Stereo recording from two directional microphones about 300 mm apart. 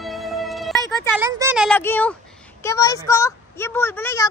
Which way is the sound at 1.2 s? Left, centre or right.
Centre.